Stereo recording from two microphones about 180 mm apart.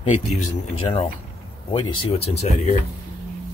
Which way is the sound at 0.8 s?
30° left (ahead or behind).